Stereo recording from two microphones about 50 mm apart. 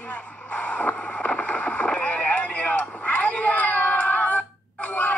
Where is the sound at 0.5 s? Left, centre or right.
Left.